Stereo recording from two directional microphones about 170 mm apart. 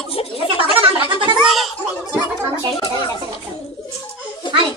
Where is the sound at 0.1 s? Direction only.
35° left (ahead or behind).